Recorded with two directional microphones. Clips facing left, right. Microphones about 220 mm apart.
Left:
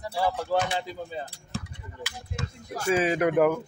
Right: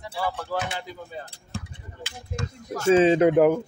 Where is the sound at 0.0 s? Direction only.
40° left (ahead or behind).